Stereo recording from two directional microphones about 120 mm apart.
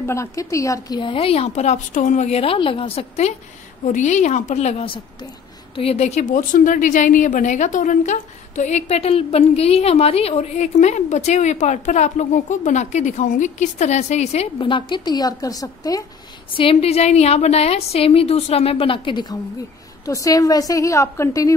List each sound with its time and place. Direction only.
0.0 s a woman's voice: 25° left (ahead or behind); by 3.3 s 60° left (ahead or behind)
3.9 s a woman's voice: 85° left; by 14.5 s 65° left (ahead or behind)
14.6 s a woman's voice: 45° left (ahead or behind)
16.5 s a woman's voice: 55° left (ahead or behind)
20.1 s a woman's voice: 30° left (ahead or behind)